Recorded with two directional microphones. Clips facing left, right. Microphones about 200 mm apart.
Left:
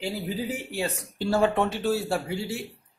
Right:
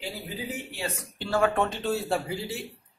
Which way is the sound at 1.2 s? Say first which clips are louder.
Left 2 dB; 40° left (ahead or behind).